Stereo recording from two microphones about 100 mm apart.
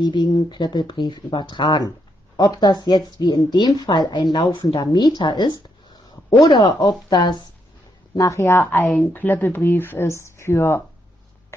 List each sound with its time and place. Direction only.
0.0 s a woman's voice: 50° left (ahead or behind)
8.2 s speech: 30° left (ahead or behind)